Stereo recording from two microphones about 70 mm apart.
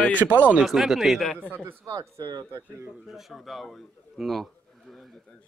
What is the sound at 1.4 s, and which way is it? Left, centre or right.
Speech, right.